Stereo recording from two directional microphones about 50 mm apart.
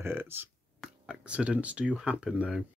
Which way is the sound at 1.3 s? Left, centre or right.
Right.